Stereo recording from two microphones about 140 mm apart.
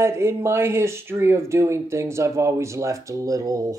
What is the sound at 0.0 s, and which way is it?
Speech, 20° right (ahead or behind).